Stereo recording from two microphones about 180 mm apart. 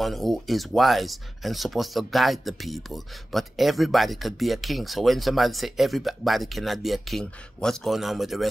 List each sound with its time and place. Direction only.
0.0 s speech: centre (ahead or behind)